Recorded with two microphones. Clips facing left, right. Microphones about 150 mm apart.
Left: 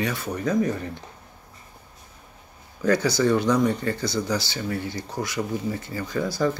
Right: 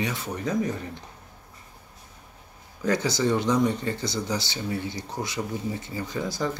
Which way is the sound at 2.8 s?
20° right (ahead or behind).